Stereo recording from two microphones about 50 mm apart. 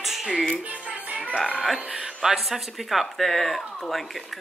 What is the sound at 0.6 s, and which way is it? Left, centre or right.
Music, right.